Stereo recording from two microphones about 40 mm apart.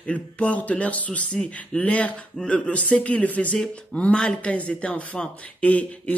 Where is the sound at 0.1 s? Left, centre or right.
Left.